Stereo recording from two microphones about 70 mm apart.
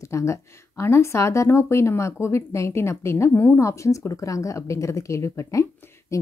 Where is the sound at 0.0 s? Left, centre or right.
Left.